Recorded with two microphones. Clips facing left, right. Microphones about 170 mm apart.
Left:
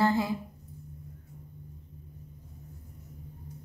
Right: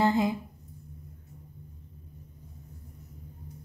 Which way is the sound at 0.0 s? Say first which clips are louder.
Right 1 dB; 20° right (ahead or behind).